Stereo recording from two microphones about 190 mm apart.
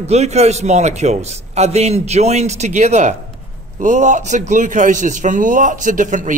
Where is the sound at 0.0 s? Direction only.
35° right (ahead or behind).